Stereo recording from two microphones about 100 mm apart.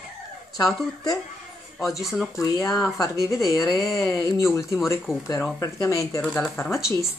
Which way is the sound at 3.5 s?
35° left (ahead or behind).